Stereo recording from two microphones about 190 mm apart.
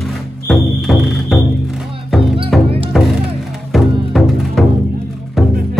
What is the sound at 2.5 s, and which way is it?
Music, centre (ahead or behind).